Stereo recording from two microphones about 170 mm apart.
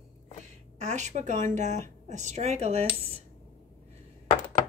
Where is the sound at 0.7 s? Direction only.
45° right (ahead or behind).